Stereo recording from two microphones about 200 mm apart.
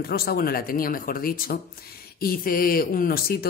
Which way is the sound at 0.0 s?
50° left (ahead or behind).